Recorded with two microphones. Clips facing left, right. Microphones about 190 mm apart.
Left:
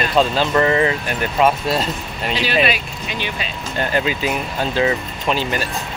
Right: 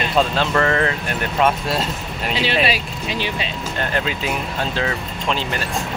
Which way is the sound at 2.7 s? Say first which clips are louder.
Even; 30° right (ahead or behind).